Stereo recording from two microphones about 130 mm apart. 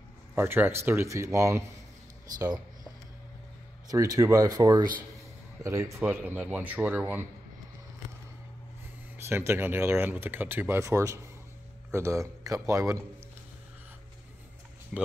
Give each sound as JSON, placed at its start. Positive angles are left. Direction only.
{"t": 0.3, "sound": "speech", "side_deg": -15}
{"t": 3.9, "sound": "speech", "side_deg": -25}
{"t": 9.3, "sound": "speech", "side_deg": -20}
{"t": 14.9, "sound": "speech", "side_deg": -5}